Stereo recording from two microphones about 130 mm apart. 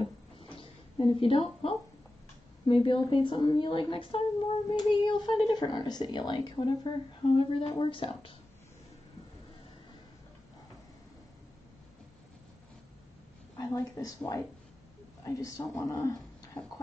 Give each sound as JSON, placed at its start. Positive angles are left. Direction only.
{"t": 0.0, "sound": "a sound", "side_deg": 45}
{"t": 2.6, "sound": "a woman's voice", "side_deg": 40}
{"t": 13.6, "sound": "speech", "side_deg": 25}